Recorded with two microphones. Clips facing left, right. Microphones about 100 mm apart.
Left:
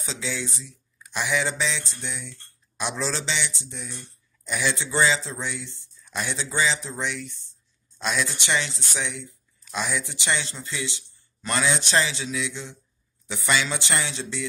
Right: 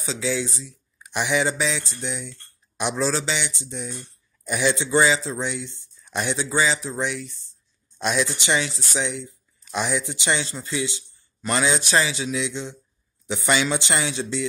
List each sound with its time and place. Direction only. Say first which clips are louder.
0.0 s a man's voice: right 6 dB; 5° right (ahead or behind)
6.6 s a man's voice: right 1 dB; 5° right (ahead or behind)
11.8 s a man's voice: right 2 dB; 5° right (ahead or behind)
12.3 s speech: right 4 dB; 20° right (ahead or behind)